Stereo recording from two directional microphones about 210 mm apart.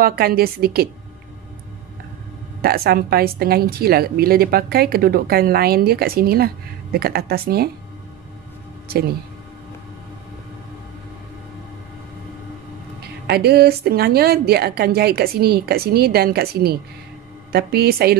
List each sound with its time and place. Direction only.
0.0 s a woman's voice: 45° right (ahead or behind)
2.6 s a woman's voice: 45° right (ahead or behind)
8.8 s speech: 50° right (ahead or behind)
13.0 s a woman's voice: 50° right (ahead or behind)